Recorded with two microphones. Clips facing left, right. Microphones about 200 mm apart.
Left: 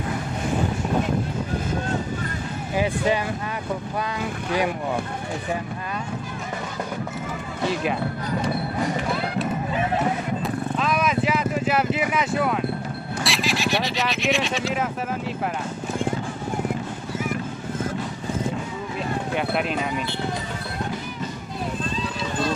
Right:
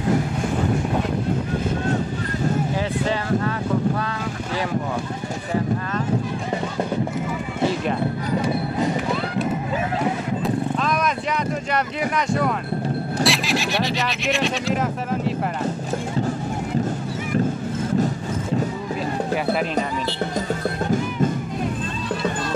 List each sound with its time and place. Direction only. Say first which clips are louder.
7.8 s speech: right 2 dB; 5° left (ahead or behind)
10.4 s horse: right 3 dB; 5° left (ahead or behind)
13.2 s speech: right 2 dB; centre (ahead or behind)